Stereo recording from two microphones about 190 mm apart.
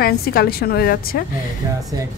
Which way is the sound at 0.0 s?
50° left (ahead or behind).